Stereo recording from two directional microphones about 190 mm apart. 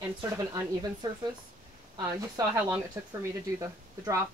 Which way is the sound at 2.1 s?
20° right (ahead or behind).